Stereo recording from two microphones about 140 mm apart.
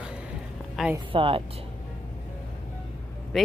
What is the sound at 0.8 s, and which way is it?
Speech, centre (ahead or behind).